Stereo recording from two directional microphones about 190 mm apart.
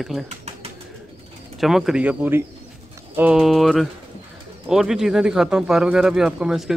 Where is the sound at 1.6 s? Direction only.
Centre (ahead or behind).